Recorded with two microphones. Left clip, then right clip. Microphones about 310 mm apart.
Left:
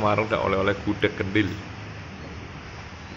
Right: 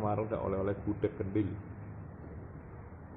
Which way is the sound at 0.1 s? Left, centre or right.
Centre.